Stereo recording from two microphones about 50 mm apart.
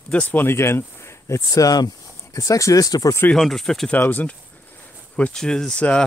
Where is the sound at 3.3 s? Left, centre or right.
Centre.